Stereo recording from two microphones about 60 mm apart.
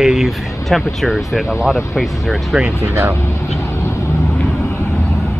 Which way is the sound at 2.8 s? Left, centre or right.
Right.